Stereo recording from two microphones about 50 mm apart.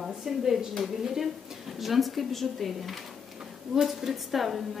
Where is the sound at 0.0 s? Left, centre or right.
Centre.